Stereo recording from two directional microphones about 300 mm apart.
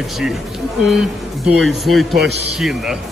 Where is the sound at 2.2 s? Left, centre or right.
Right.